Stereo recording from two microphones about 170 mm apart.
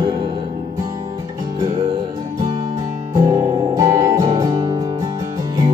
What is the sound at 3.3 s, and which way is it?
Music, 20° right (ahead or behind).